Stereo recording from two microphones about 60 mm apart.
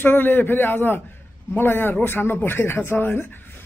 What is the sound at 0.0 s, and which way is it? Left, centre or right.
Speech, left.